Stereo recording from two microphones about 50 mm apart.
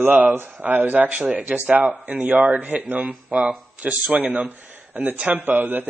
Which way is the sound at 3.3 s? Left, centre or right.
Right.